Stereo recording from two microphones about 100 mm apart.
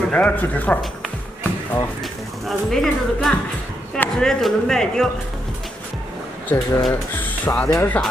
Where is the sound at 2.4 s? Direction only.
5° left (ahead or behind).